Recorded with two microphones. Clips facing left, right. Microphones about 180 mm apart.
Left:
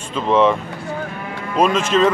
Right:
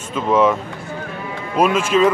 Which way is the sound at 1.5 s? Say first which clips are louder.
Even; 10° right (ahead or behind).